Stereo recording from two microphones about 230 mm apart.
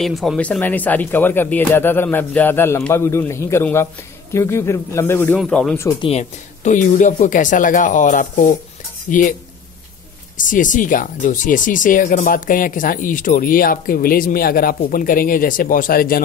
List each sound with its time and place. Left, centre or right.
0.0 s speech: centre
5.9 s speech: left
10.3 s speech: left